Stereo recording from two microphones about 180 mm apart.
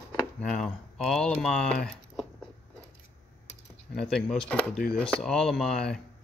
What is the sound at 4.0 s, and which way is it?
A man's voice, 5° left (ahead or behind).